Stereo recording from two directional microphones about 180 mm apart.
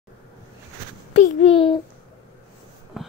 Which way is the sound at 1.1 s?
40° left (ahead or behind).